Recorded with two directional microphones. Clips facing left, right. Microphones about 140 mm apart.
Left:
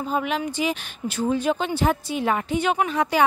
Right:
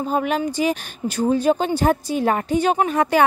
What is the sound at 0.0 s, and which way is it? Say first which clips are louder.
A woman's voice: right 4 dB; 45° right (ahead or behind).